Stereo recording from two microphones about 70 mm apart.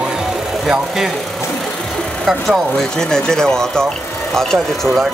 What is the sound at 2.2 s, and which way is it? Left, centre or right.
Speech, centre.